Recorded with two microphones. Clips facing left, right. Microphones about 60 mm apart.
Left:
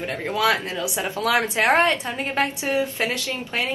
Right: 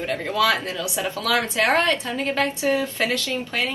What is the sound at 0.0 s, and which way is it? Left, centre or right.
Speech, left.